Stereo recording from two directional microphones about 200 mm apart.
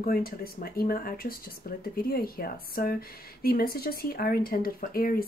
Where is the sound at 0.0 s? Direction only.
50° left (ahead or behind).